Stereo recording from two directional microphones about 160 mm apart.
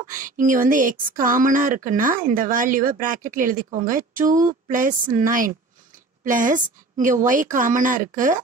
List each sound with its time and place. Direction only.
0.0 s speech: 55° right (ahead or behind)